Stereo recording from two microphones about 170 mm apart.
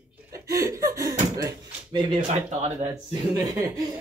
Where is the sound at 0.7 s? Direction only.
20° right (ahead or behind).